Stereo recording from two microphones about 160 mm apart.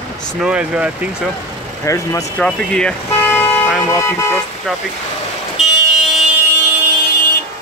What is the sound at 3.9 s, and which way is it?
Speech, 15° left (ahead or behind).